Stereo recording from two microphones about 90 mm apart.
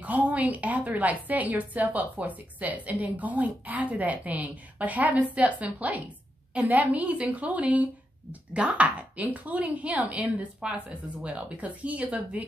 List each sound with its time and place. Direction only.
0.0 s a woman's voice: 15° right (ahead or behind)